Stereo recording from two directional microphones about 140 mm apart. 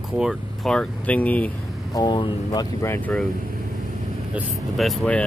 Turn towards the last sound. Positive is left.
turn(degrees=5)  # may be behind; listen again after turning